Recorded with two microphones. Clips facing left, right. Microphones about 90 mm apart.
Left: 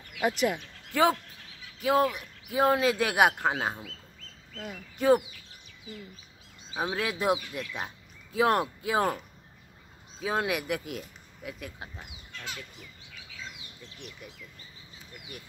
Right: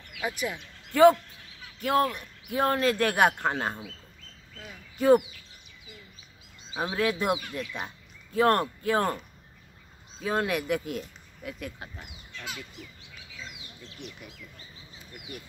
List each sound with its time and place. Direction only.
0.3 s speech: 75° left (ahead or behind)
0.9 s speech: centre (ahead or behind)
4.9 s speech: centre (ahead or behind)
6.8 s speech: 5° left (ahead or behind)
10.2 s speech: 5° left (ahead or behind)